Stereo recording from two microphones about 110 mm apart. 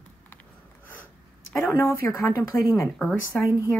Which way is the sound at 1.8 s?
25° left (ahead or behind).